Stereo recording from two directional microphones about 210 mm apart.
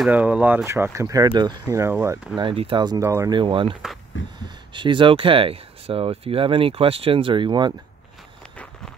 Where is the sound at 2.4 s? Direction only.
25° right (ahead or behind).